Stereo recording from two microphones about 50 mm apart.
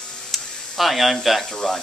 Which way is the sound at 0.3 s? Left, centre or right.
Centre.